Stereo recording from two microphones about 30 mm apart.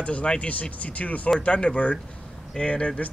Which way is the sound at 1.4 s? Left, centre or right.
Left.